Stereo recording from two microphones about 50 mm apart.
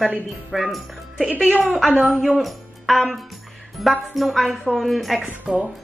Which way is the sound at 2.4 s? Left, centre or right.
Centre.